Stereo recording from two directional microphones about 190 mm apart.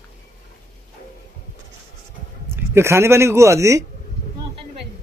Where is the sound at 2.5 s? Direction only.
15° right (ahead or behind).